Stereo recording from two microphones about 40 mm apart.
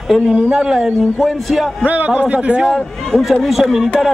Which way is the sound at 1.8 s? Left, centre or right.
Right.